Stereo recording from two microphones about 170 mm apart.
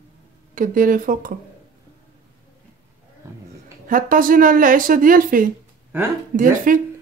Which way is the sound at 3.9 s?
55° right (ahead or behind).